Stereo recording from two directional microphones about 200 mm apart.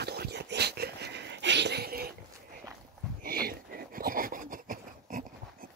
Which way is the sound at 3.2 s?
50° right (ahead or behind).